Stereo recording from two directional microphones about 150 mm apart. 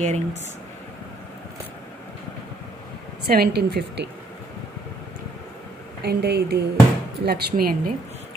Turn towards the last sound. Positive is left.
turn(degrees=-85)